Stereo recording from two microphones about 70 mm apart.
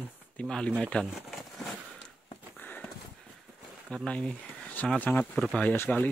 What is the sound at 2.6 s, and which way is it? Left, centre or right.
Clip-clop, left.